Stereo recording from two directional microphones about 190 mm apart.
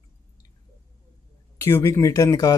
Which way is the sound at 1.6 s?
15° left (ahead or behind).